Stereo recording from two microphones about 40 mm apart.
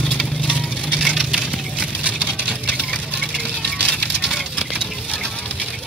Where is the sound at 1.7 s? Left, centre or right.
Right.